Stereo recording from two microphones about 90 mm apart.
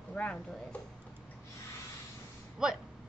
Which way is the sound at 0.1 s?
15° left (ahead or behind).